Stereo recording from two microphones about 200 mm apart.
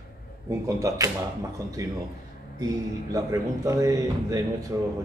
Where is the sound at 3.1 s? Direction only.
15° right (ahead or behind).